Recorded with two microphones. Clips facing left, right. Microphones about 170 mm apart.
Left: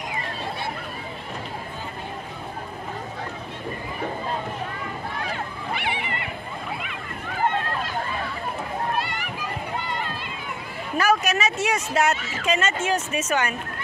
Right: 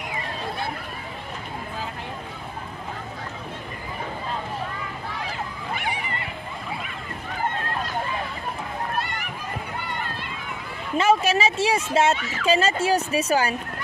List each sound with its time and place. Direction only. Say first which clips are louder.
5.8 s neigh: left 1 dB; 40° right (ahead or behind)
11.0 s speech: right 2 dB; 25° right (ahead or behind)